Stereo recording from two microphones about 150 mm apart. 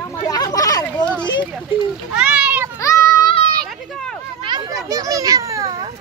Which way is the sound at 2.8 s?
20° left (ahead or behind).